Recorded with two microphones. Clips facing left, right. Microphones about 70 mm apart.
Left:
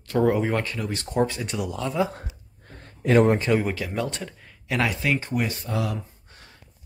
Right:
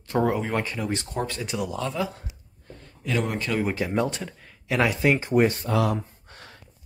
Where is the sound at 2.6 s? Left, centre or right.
Left.